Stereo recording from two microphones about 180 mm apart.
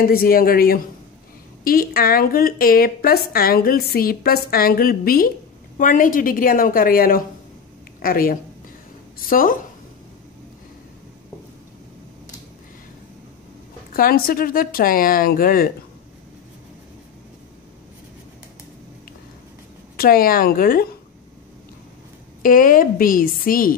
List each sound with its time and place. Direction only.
0.0 s a woman's voice: 55° left (ahead or behind)
13.9 s a woman's voice: 55° left (ahead or behind)
20.0 s a woman's voice: 55° left (ahead or behind)
22.4 s a woman's voice: 50° left (ahead or behind)